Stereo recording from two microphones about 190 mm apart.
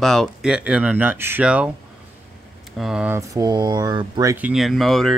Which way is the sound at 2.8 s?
5° right (ahead or behind).